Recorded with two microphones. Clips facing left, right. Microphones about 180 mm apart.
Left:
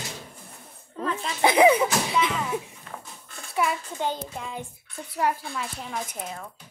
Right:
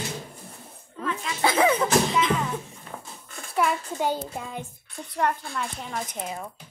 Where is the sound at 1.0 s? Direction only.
35° left (ahead or behind).